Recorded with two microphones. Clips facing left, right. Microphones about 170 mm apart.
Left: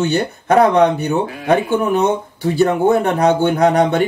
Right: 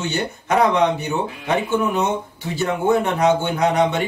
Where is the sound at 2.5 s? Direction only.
40° left (ahead or behind).